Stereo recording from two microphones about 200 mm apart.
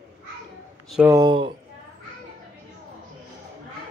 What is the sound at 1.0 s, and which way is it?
Speech, 20° right (ahead or behind).